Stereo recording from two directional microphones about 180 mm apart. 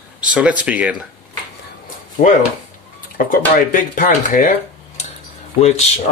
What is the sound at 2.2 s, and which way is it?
Speech, 50° left (ahead or behind).